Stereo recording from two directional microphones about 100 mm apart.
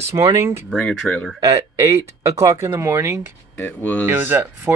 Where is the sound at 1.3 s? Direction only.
35° right (ahead or behind).